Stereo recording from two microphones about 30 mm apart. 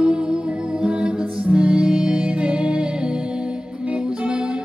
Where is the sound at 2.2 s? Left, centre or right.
Right.